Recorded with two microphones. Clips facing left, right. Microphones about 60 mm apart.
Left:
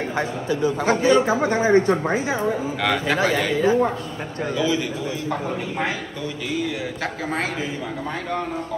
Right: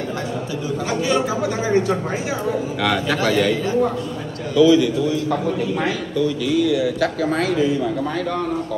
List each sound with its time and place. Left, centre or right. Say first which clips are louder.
1.0 s speech: left 3 dB; left
2.8 s a man's voice: right 1 dB; left